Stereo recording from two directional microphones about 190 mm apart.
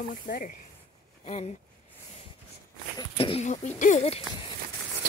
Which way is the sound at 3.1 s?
30° left (ahead or behind).